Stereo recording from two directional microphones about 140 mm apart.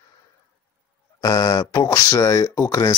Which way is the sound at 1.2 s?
25° left (ahead or behind).